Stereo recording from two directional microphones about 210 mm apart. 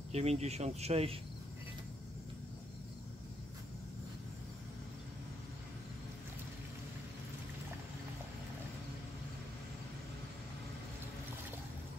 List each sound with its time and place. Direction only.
0.1 s speech: 30° right (ahead or behind)